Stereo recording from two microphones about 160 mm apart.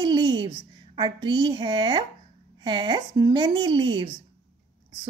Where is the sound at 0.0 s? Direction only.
25° right (ahead or behind).